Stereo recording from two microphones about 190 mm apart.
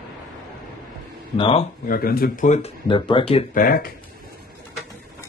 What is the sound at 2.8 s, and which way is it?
Speech, 25° left (ahead or behind).